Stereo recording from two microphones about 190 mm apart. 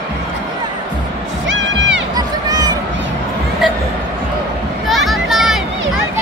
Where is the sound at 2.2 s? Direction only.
20° right (ahead or behind).